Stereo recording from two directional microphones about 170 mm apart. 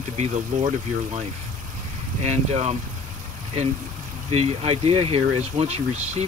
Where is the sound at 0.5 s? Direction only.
45° right (ahead or behind).